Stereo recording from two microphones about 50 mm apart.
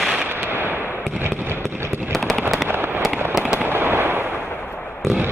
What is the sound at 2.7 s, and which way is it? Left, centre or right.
Fireworks, right.